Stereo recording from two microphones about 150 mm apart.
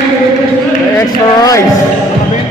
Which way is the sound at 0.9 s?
20° left (ahead or behind).